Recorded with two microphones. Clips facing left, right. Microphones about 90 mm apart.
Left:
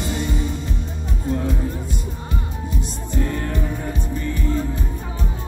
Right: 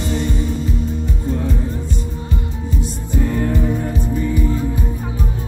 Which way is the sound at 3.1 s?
5° right (ahead or behind).